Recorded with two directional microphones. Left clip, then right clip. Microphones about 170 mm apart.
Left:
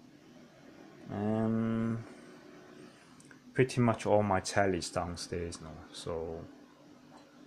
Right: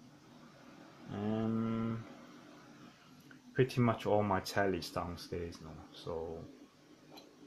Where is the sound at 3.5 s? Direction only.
5° left (ahead or behind).